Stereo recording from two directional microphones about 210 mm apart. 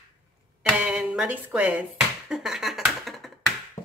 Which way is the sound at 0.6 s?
5° right (ahead or behind).